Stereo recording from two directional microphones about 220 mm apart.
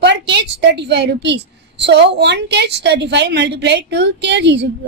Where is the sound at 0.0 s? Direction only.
50° right (ahead or behind).